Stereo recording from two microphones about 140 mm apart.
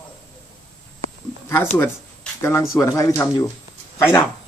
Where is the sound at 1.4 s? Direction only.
15° left (ahead or behind).